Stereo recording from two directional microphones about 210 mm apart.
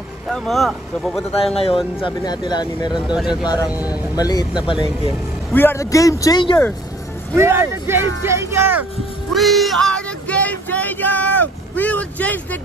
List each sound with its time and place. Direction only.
0.3 s speech: centre (ahead or behind)
1.3 s speech: 30° left (ahead or behind)
3.2 s speech: centre (ahead or behind)
3.4 s speech: 20° left (ahead or behind)
5.5 s speech: 10° left (ahead or behind)
7.3 s speech: 10° right (ahead or behind)
9.3 s music: centre (ahead or behind)